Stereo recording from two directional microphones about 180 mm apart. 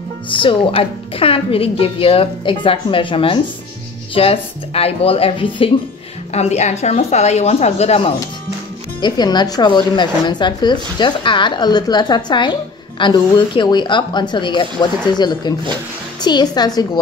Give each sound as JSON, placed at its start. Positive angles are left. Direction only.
{"t": 0.4, "sound": "a woman's voice", "side_deg": 30}
{"t": 9.0, "sound": "a woman's voice", "side_deg": 25}